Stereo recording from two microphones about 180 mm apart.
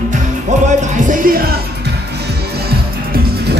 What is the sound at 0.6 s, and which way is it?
Music, 40° right (ahead or behind).